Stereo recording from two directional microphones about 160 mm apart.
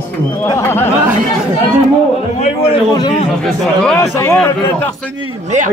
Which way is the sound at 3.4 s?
5° left (ahead or behind).